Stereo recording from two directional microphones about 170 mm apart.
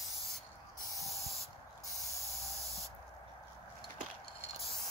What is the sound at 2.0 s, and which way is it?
Spray, 20° right (ahead or behind).